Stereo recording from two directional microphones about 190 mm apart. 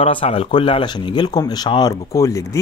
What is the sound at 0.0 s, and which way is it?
Speech, 30° left (ahead or behind).